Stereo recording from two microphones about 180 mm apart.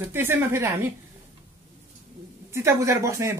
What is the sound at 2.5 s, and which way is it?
Speech, 15° right (ahead or behind).